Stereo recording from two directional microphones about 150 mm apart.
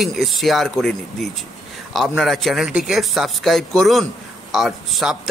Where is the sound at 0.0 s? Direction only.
Centre (ahead or behind).